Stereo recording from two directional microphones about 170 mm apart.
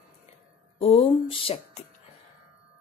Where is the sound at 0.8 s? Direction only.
35° left (ahead or behind).